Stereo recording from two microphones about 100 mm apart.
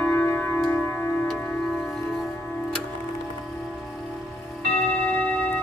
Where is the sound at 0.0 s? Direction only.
20° left (ahead or behind).